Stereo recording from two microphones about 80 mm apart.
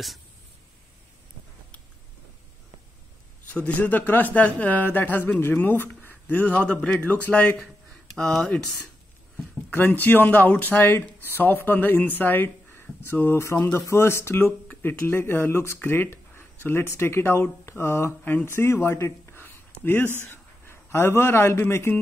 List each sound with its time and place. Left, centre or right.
3.4 s a man's voice: centre
6.0 s a sound: left
6.7 s a man's voice: centre
8.2 s speech: centre
9.7 s a man's voice: left